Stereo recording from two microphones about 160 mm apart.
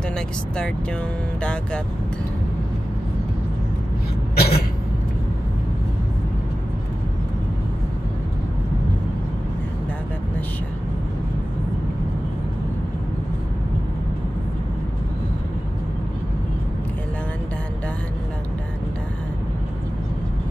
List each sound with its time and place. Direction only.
1.4 s speech: 5° left (ahead or behind)
4.4 s vehicle: 80° left